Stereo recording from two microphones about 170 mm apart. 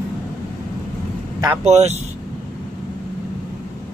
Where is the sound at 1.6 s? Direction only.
40° right (ahead or behind).